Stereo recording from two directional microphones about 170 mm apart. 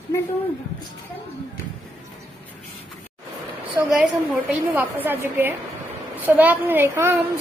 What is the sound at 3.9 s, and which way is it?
A woman's voice, centre (ahead or behind).